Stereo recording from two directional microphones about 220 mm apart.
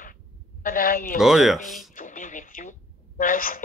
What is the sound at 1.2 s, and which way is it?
Speech, centre (ahead or behind).